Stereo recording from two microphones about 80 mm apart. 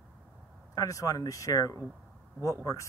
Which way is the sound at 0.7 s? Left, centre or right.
Left.